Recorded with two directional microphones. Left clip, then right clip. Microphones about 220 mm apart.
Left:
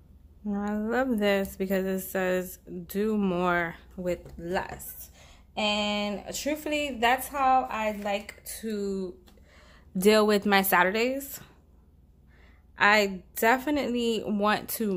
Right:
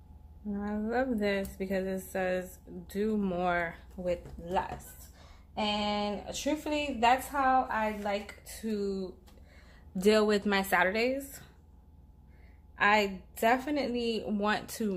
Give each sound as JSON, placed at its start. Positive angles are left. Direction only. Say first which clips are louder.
{"t": 0.5, "sound": "speech", "louder": "left 4 dB", "side_deg": 30}
{"t": 12.7, "sound": "speech", "louder": "left 4 dB", "side_deg": 30}